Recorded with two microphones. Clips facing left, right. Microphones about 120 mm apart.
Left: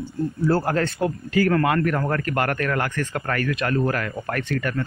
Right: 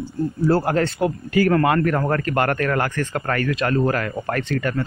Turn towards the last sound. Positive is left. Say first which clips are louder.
# right 2 dB
turn(degrees=-25)  # may be behind; listen again after turning